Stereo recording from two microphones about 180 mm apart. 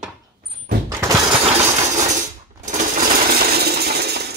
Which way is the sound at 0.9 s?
15° right (ahead or behind).